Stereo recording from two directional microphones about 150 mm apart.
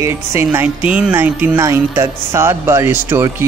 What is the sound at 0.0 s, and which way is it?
Music, 15° right (ahead or behind).